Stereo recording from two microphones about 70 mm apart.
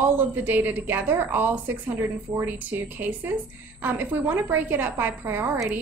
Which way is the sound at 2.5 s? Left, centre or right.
Right.